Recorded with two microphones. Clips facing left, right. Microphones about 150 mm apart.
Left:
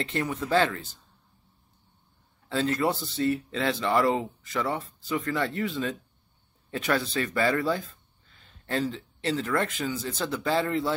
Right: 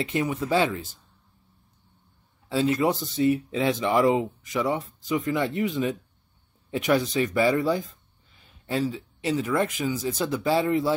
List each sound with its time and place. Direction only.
0.0 s speech: 15° right (ahead or behind)
2.5 s speech: 15° right (ahead or behind)